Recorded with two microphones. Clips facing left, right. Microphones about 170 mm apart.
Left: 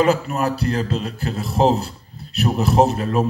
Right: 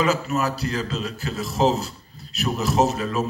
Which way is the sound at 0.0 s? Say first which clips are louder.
Left 4 dB; 55° left (ahead or behind).